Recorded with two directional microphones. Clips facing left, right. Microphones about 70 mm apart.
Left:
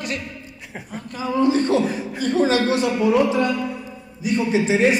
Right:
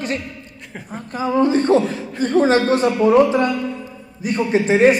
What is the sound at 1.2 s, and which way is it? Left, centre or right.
A woman's voice, right.